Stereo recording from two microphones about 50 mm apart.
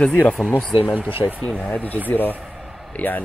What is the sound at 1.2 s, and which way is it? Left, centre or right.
Speech, left.